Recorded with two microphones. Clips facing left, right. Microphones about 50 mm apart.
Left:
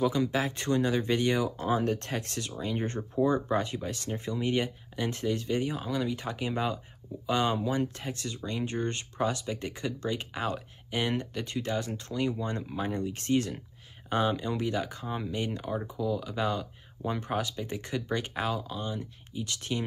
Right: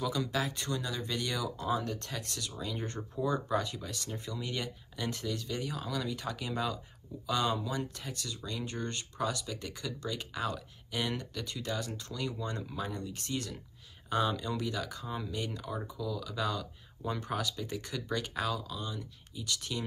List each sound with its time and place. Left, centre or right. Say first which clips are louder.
0.0 s speech: left 6 dB; left